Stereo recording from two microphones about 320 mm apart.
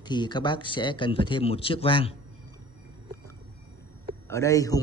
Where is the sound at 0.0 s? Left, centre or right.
Centre.